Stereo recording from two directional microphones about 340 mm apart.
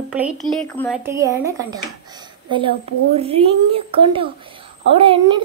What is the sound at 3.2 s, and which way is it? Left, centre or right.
A child's voice, centre.